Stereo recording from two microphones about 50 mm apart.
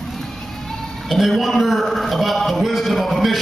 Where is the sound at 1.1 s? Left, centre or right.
Centre.